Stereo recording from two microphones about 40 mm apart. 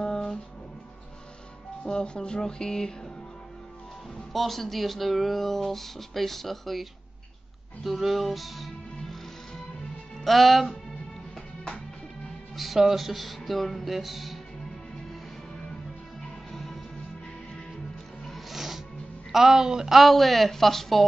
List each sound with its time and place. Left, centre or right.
0.0 s music: centre
1.9 s speech: left
4.3 s speech: centre
10.2 s speech: centre
12.5 s speech: centre
16.2 s music: centre
18.2 s music: centre
19.3 s speech: centre
20.0 s speech: centre